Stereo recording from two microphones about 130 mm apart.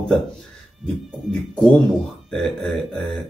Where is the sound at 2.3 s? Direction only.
5° left (ahead or behind).